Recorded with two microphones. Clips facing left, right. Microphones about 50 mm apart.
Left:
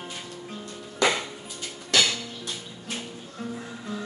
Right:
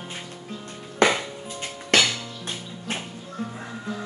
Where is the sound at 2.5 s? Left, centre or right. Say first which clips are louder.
Right 4 dB; right.